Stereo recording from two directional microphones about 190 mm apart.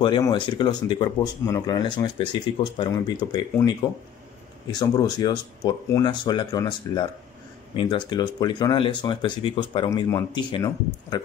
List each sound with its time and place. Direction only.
0.0 s speech: 25° left (ahead or behind)